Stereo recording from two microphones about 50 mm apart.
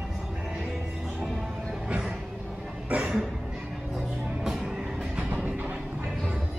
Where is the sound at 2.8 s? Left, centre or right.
Right.